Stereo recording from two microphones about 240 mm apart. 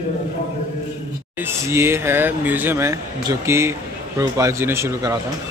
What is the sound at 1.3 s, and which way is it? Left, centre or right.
Speech, centre.